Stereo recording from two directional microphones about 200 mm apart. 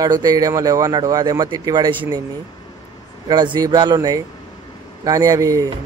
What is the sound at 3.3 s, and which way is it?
A man's voice, 20° right (ahead or behind).